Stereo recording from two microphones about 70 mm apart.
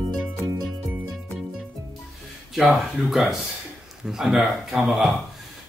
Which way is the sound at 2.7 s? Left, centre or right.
Centre.